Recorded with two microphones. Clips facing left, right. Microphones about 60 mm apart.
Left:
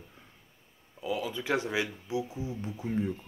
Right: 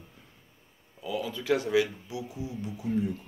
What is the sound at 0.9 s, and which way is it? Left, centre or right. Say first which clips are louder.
Speech: even; centre.